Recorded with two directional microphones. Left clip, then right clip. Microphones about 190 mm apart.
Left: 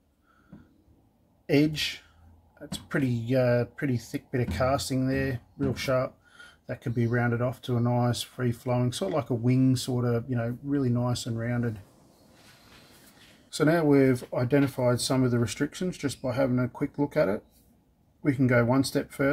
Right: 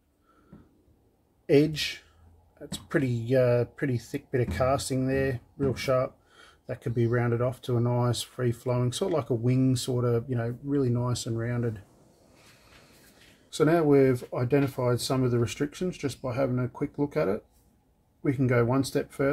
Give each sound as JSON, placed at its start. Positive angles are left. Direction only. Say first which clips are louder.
{"t": 1.4, "sound": "speech", "louder": "right 2 dB", "side_deg": -25}
{"t": 13.5, "sound": "speech", "louder": "right 1 dB", "side_deg": -10}